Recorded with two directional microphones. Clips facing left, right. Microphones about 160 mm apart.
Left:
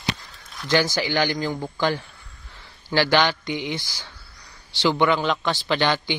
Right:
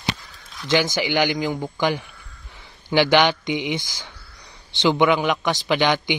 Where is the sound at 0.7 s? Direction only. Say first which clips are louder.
Right 1 dB; 20° right (ahead or behind).